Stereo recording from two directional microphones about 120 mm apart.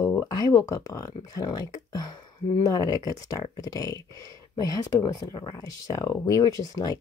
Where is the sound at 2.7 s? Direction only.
35° left (ahead or behind).